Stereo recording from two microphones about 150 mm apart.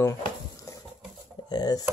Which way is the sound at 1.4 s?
30° left (ahead or behind).